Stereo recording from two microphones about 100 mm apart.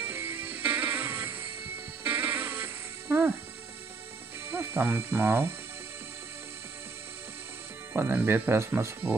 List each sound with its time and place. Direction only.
0.0 s music: 20° right (ahead or behind)
4.5 s speech: 25° right (ahead or behind)
7.9 s speech: 25° right (ahead or behind)